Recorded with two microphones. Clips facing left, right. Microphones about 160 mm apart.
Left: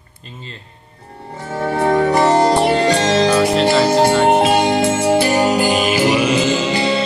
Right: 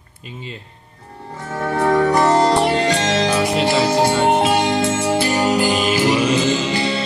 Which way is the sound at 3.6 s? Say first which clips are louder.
Left 3 dB; 5° right (ahead or behind).